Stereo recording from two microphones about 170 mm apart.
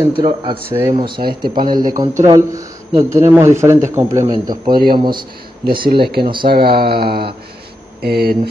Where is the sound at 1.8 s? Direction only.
25° right (ahead or behind).